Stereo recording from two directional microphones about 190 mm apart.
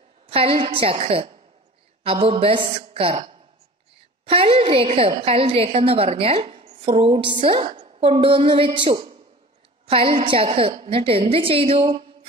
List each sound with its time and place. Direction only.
0.3 s a woman's voice: 30° right (ahead or behind)